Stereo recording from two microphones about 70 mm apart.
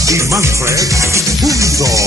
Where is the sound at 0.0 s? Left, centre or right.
Right.